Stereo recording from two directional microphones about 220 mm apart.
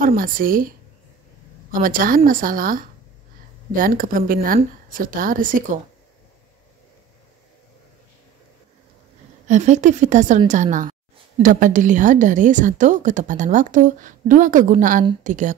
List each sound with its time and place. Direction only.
0.0 s a woman's voice: 40° right (ahead or behind)
9.5 s a woman's voice: 35° right (ahead or behind)